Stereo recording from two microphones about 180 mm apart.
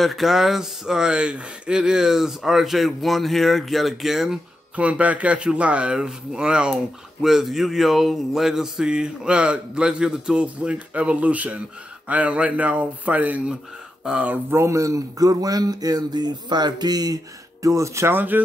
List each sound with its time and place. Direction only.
0.0 s speech: centre (ahead or behind)